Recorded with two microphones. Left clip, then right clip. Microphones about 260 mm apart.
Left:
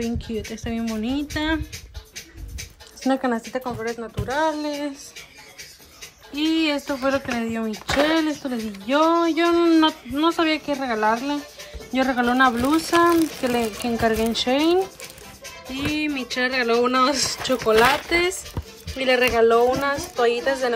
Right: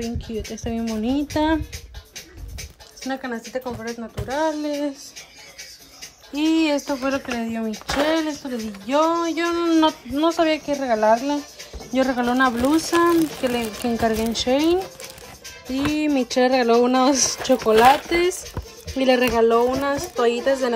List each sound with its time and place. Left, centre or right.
0.0 s speech: centre
3.1 s a woman's voice: centre
6.3 s speech: centre
16.3 s speech: centre